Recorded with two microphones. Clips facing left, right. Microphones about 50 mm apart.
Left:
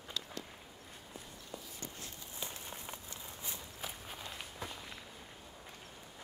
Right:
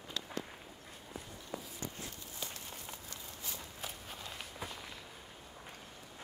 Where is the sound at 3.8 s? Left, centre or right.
Centre.